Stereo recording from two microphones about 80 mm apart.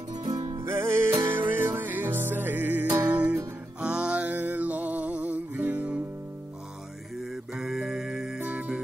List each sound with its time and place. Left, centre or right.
0.2 s music: right
0.7 s music: right
7.5 s music: centre